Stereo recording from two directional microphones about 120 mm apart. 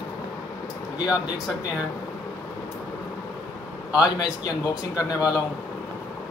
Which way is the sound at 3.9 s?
30° left (ahead or behind).